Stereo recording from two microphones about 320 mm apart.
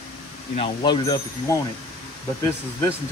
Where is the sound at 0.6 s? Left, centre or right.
Centre.